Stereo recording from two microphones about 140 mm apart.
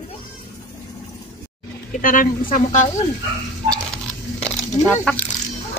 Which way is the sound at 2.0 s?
75° left (ahead or behind).